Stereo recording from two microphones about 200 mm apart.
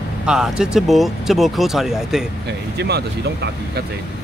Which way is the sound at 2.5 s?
55° right (ahead or behind).